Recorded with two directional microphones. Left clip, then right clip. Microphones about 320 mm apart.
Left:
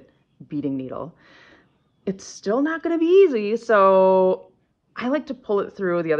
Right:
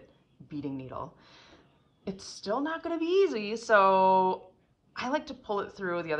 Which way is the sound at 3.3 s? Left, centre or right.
Centre.